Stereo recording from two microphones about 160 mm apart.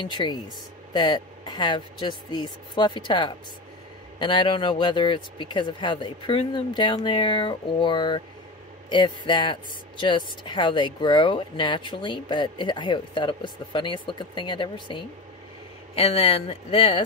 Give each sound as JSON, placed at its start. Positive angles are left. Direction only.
{"t": 0.0, "sound": "speech", "side_deg": 30}